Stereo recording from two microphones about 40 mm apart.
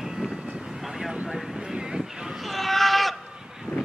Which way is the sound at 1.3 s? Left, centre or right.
Centre.